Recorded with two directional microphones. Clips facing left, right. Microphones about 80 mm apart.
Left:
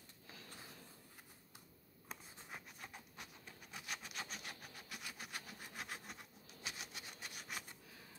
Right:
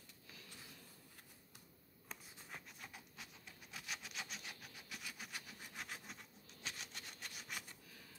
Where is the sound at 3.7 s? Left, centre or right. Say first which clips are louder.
Left 1 dB; centre.